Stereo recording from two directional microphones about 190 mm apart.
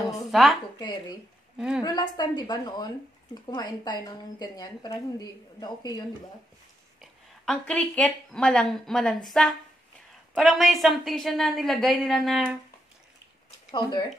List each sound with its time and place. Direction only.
0.0 s speech: centre (ahead or behind)
0.7 s a woman's voice: 20° left (ahead or behind)
7.0 s a woman's voice: centre (ahead or behind)
13.7 s speech: 25° left (ahead or behind)